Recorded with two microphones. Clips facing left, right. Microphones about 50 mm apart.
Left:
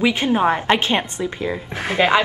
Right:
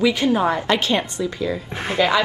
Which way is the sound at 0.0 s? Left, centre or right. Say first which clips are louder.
Even; left.